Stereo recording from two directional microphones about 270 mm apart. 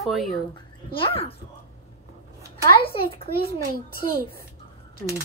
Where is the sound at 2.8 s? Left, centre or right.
Left.